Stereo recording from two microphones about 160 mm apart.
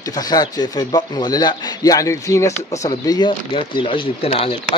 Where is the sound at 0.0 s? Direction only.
25° left (ahead or behind).